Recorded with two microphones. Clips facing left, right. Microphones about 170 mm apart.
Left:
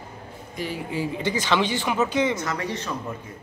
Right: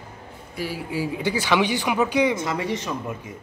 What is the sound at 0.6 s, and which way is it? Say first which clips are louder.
Speech: right 1 dB; 10° right (ahead or behind).